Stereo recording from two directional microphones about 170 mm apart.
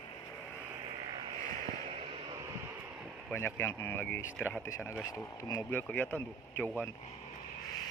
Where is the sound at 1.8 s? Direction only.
35° right (ahead or behind).